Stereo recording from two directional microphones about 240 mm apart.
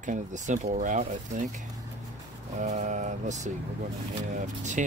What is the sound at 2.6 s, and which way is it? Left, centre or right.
Speech, right.